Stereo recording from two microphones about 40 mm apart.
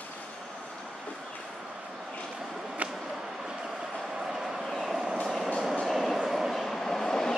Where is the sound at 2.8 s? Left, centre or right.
Centre.